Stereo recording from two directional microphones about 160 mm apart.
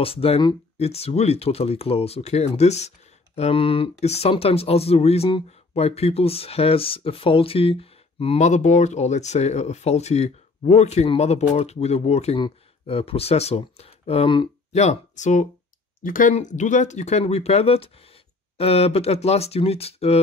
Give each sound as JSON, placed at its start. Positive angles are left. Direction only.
{"t": 0.0, "sound": "speech", "side_deg": 35}
{"t": 14.8, "sound": "speech", "side_deg": 45}